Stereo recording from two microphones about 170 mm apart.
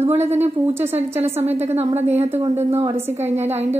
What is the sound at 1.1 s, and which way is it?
Speech, 15° right (ahead or behind).